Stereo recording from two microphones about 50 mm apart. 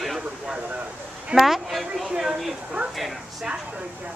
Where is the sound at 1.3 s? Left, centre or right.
Centre.